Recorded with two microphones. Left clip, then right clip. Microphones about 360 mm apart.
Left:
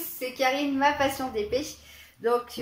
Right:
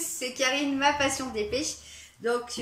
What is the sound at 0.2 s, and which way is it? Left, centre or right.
Speech, centre.